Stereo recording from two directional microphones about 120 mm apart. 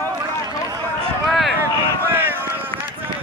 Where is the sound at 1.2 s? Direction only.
Centre (ahead or behind).